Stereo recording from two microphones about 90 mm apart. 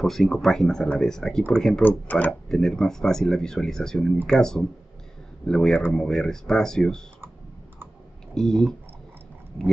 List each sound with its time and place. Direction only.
0.0 s speech: centre (ahead or behind)
1.8 s speech: 20° left (ahead or behind)
2.5 s speech: 5° left (ahead or behind)
8.4 s speech: 5° left (ahead or behind)